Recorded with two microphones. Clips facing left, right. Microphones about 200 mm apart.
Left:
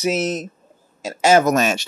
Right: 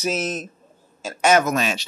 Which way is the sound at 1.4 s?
45° left (ahead or behind).